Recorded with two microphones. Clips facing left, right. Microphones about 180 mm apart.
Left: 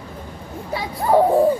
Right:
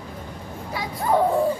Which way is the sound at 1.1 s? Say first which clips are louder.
Left 5 dB; 35° left (ahead or behind).